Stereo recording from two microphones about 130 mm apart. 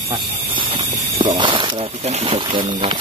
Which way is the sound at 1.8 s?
55° right (ahead or behind).